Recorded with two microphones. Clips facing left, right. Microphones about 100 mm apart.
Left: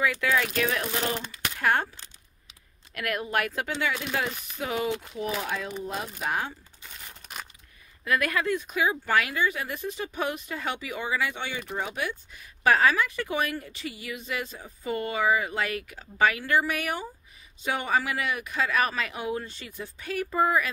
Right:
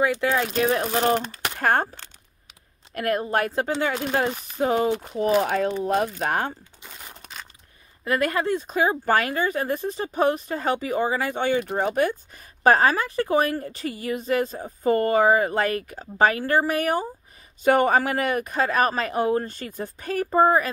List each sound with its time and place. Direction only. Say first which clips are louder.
0.0 s speech: right 4 dB; 30° right (ahead or behind)
2.9 s speech: right 6 dB; 35° right (ahead or behind); by 6.5 s 50° right (ahead or behind)
8.0 s speech: right 3 dB; 30° right (ahead or behind)
17.6 s speech: right 8 dB; 50° right (ahead or behind)